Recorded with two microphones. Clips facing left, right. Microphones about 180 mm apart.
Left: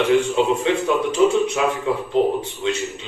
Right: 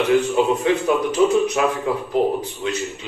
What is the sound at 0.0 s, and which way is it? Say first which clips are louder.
A man's voice: even; 25° left (ahead or behind).